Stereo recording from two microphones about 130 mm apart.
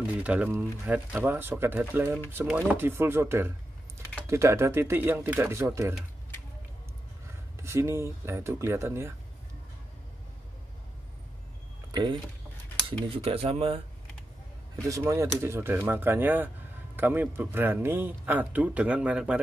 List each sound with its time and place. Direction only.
0.0 s a man's voice: 10° right (ahead or behind)
7.5 s speech: 20° right (ahead or behind)
11.9 s speech: 35° right (ahead or behind)
13.1 s speech: 50° right (ahead or behind)
14.8 s a man's voice: 25° right (ahead or behind); by 19.4 s 10° right (ahead or behind)